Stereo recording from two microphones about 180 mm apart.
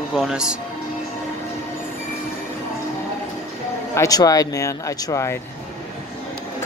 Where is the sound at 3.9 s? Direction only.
20° left (ahead or behind).